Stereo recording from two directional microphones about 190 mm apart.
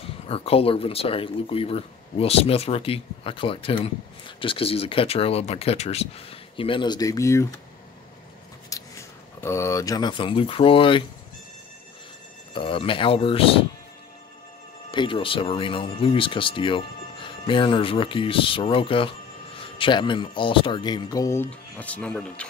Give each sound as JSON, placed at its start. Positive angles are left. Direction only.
{"t": 0.3, "sound": "speech", "side_deg": 30}
{"t": 9.4, "sound": "speech", "side_deg": 15}
{"t": 12.5, "sound": "speech", "side_deg": 25}
{"t": 14.9, "sound": "speech", "side_deg": 25}